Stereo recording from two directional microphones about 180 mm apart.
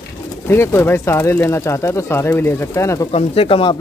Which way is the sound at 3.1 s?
30° left (ahead or behind).